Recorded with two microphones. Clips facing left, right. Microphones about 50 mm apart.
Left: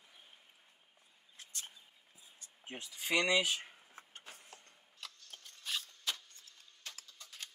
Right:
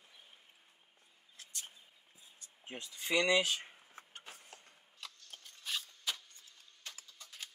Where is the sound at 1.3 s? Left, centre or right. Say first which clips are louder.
Even; left.